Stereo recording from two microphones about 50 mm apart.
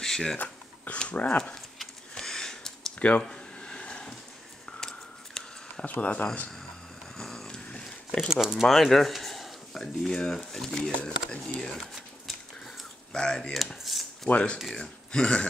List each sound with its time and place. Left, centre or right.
0.0 s a sound: centre
0.4 s speech: left
1.4 s sniff: centre
3.0 s a sound: centre
5.9 s speech: left
7.2 s a sound: centre
8.3 s speech: centre
8.6 s speech: centre
10.8 s speech: left
13.1 s speech: centre
13.5 s cutlery: centre
14.3 s speech: left